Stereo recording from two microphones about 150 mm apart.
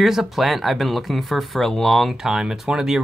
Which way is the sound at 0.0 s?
Centre (ahead or behind).